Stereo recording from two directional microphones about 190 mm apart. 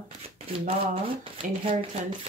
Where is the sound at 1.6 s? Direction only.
35° right (ahead or behind).